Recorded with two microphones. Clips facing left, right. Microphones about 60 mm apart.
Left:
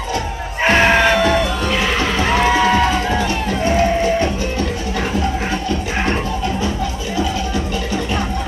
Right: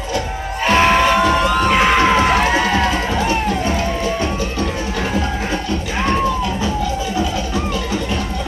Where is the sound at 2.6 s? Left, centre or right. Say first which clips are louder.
Left 2 dB; left.